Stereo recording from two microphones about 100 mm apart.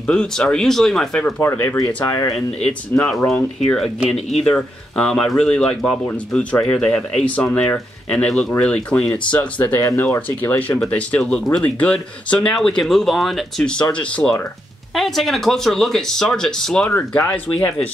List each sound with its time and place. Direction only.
0.0 s speech: 10° left (ahead or behind)
1.4 s speech: 25° left (ahead or behind)
2.3 s speech: 5° left (ahead or behind)
9.8 s speech: 30° left (ahead or behind)
10.0 s speech: 15° left (ahead or behind)
15.0 s speech: centre (ahead or behind)
16.9 s speech: 15° left (ahead or behind)